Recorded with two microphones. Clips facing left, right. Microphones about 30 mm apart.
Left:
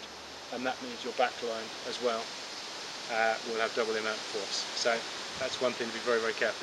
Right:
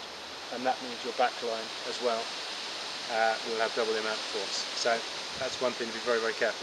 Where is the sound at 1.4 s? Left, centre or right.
Right.